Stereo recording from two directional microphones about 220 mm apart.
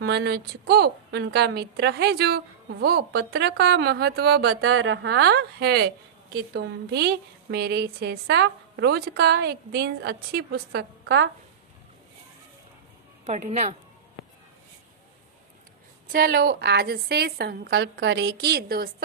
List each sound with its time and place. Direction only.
0.0 s a woman's voice: 45° right (ahead or behind)
4.6 s a woman's voice: 65° right (ahead or behind)
13.2 s a woman's voice: 30° right (ahead or behind)
16.1 s a woman's voice: 45° right (ahead or behind)